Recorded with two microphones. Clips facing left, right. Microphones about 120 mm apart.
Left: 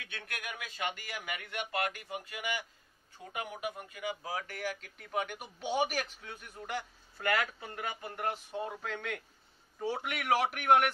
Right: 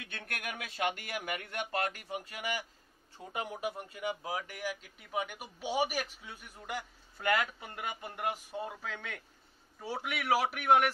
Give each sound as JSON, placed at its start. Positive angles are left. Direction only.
{"t": 0.1, "sound": "a man's voice", "side_deg": -60}
{"t": 4.4, "sound": "a man's voice", "side_deg": -10}